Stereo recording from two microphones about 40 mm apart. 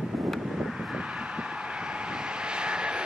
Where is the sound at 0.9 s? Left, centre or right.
Right.